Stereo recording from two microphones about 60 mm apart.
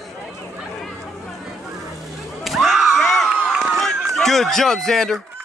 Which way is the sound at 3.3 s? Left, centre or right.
Right.